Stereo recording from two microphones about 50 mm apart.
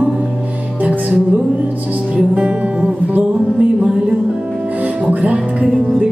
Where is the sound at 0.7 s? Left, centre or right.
Right.